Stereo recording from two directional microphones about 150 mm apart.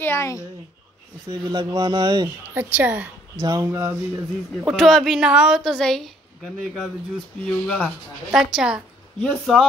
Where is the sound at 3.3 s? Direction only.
25° right (ahead or behind).